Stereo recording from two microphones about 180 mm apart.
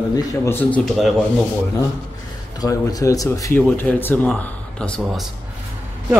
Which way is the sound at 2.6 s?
20° left (ahead or behind).